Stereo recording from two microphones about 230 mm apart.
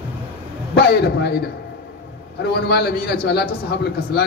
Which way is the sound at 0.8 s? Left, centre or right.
Left.